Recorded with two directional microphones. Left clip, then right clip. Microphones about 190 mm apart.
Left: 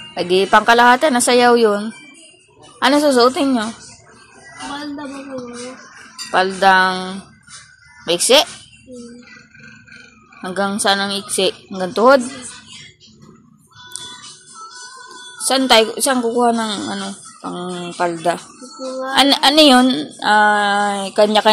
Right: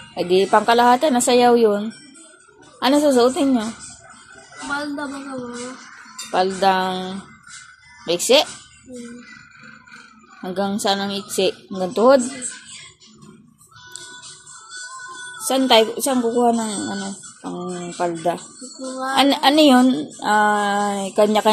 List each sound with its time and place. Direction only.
0.1 s a woman's voice: 5° right (ahead or behind)
6.3 s a woman's voice: 10° right (ahead or behind)
10.4 s a woman's voice: 10° right (ahead or behind)
15.4 s a woman's voice: 10° right (ahead or behind)